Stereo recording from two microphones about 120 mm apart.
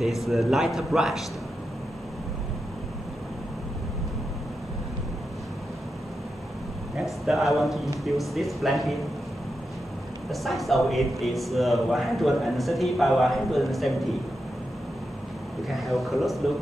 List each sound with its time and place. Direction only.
0.3 s speech: centre (ahead or behind)
7.2 s speech: centre (ahead or behind)
10.3 s speech: centre (ahead or behind)
15.7 s speech: centre (ahead or behind)